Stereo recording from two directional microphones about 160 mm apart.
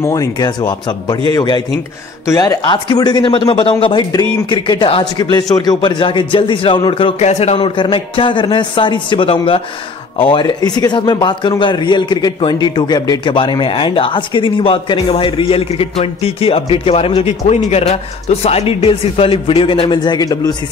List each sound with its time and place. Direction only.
0.0 s speech: 20° left (ahead or behind)